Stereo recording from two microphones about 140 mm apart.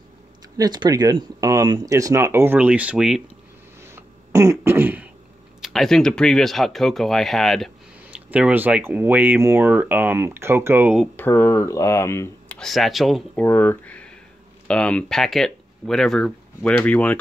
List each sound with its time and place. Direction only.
0.6 s speech: 30° right (ahead or behind); by 3.2 s 5° right (ahead or behind)
3.9 s throat clearing: 20° right (ahead or behind)
5.6 s speech: centre (ahead or behind)
8.0 s speech: 10° right (ahead or behind)
11.1 s speech: 15° left (ahead or behind)
12.5 s speech: centre (ahead or behind)
13.4 s speech: 15° left (ahead or behind)